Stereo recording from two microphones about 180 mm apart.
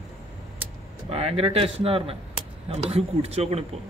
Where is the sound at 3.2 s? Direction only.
35° right (ahead or behind).